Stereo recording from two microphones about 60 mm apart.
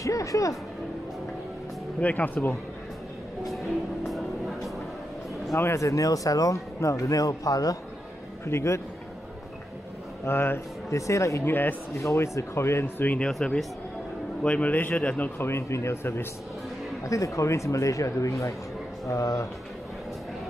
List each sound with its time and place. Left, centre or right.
0.0 s music: left
2.0 s speech: left
3.5 s speech: centre
5.6 s speech: left
8.5 s speech: left
10.2 s speech: left
10.9 s speech: left
11.4 s speech: left
12.1 s speech: left
13.3 s speech: centre
14.4 s speech: left
15.3 s speech: left
17.0 s speech: left
19.0 s speech: left